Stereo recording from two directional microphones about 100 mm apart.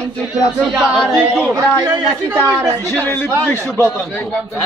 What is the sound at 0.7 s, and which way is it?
Speech, 5° right (ahead or behind).